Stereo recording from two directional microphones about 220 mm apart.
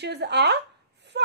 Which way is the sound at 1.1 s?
55° right (ahead or behind).